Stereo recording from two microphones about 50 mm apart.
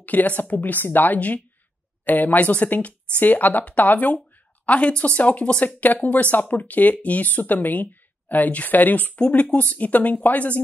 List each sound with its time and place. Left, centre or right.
0.0 s speech: left